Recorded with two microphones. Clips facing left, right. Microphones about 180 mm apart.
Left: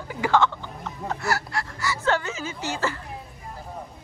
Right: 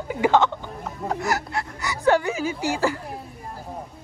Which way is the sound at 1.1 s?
15° right (ahead or behind).